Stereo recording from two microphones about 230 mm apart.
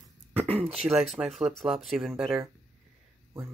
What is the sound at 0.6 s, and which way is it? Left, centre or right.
Speech, right.